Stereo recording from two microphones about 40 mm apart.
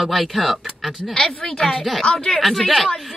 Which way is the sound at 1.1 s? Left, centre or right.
Left.